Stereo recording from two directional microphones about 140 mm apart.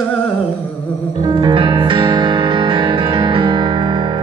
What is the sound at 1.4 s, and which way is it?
Music, 35° right (ahead or behind).